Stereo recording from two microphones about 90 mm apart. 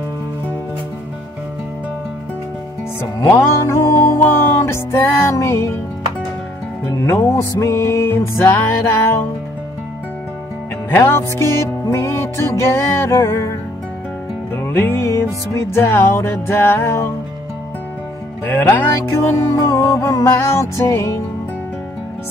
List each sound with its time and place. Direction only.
3.2 s music: 35° left (ahead or behind)
7.0 s music: 30° left (ahead or behind)
10.9 s music: 25° left (ahead or behind)
18.4 s music: 25° left (ahead or behind)